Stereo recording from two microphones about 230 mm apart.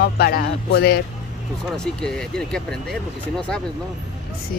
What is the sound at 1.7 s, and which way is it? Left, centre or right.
Speech, centre.